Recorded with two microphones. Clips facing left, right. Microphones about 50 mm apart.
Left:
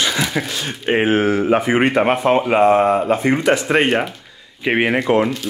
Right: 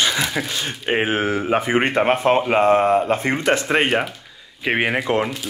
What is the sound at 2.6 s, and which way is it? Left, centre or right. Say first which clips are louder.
Speech: left 2 dB; left.